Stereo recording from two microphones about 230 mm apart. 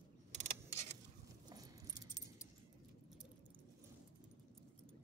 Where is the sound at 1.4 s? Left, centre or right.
Centre.